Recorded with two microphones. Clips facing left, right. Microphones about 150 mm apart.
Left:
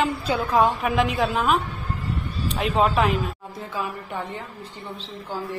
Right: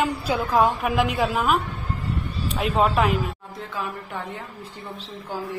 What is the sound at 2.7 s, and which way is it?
Speech, centre (ahead or behind).